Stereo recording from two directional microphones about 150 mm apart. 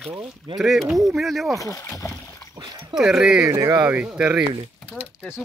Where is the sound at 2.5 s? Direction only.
25° right (ahead or behind).